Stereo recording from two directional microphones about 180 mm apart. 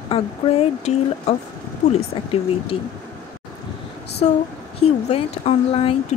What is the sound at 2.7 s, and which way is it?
Speech, 35° left (ahead or behind).